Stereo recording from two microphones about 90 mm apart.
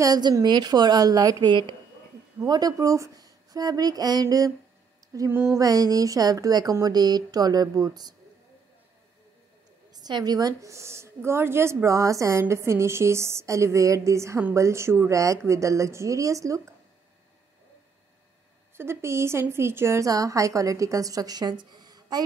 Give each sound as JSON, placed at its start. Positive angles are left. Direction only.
{"t": 0.0, "sound": "a woman's voice", "side_deg": -45}
{"t": 2.4, "sound": "a woman's voice", "side_deg": -45}
{"t": 5.1, "sound": "a sound", "side_deg": -35}
{"t": 5.5, "sound": "a woman's voice", "side_deg": -45}
{"t": 9.9, "sound": "a woman's voice", "side_deg": -50}
{"t": 18.8, "sound": "a woman's voice", "side_deg": -30}